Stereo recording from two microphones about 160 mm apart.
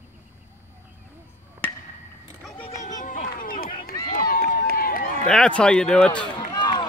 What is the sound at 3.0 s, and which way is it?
Run, 55° left (ahead or behind).